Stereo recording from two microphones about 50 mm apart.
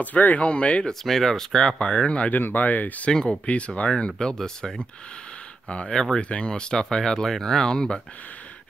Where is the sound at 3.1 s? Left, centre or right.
Centre.